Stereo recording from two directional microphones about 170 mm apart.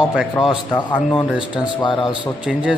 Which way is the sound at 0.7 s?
25° left (ahead or behind).